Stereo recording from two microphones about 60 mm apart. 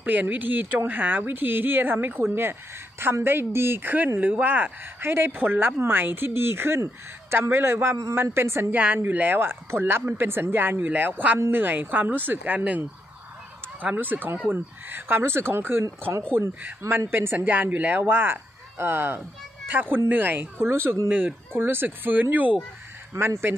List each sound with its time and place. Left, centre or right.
0.0 s speech: right
3.3 s speech: right
8.7 s speech: right
13.9 s speech: right
17.5 s speech: right
21.1 s speech: right
23.1 s speech: right